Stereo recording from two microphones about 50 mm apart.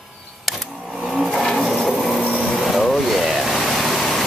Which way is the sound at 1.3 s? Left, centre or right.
Centre.